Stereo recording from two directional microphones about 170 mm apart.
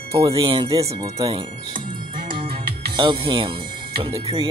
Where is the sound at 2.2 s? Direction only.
30° right (ahead or behind).